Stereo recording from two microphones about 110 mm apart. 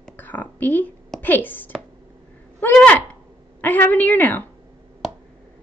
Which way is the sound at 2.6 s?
15° left (ahead or behind).